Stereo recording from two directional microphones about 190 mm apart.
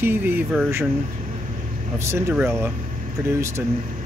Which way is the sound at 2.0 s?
15° right (ahead or behind).